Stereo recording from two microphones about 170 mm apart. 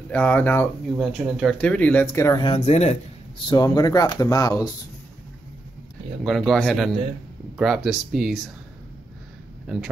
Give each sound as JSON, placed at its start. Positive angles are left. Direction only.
{"t": 0.1, "sound": "speech", "side_deg": 10}
{"t": 0.9, "sound": "speech", "side_deg": 0}
{"t": 2.4, "sound": "speech", "side_deg": 35}
{"t": 3.4, "sound": "speech", "side_deg": 25}
{"t": 6.2, "sound": "speech", "side_deg": 0}